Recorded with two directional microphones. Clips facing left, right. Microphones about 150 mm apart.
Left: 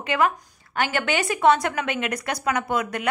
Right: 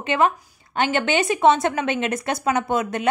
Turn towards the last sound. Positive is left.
turn(degrees=-25)  # may be behind; listen again after turning